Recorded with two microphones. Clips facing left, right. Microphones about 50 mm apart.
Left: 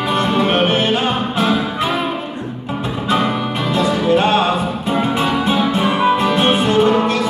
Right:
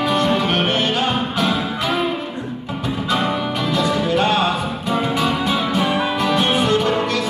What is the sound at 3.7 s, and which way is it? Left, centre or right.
Music, left.